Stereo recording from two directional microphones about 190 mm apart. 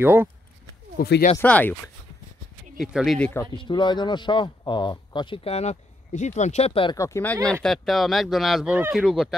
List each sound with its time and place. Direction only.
0.0 s speech: 10° right (ahead or behind)
0.9 s speech: 55° left (ahead or behind)
1.4 s speech: 10° left (ahead or behind)
2.8 s speech: centre (ahead or behind)
3.5 s speech: 25° left (ahead or behind)
7.0 s speech: 15° left (ahead or behind)
7.6 s speech: centre (ahead or behind)